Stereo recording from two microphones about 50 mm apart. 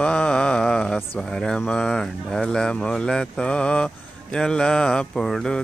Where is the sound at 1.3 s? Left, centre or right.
Centre.